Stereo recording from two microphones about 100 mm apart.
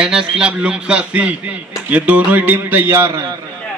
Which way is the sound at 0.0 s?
10° right (ahead or behind).